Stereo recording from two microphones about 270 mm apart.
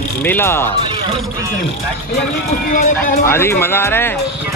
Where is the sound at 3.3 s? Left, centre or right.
Centre.